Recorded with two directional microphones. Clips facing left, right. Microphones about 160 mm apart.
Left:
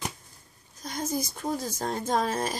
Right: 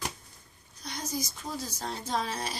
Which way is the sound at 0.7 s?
45° left (ahead or behind).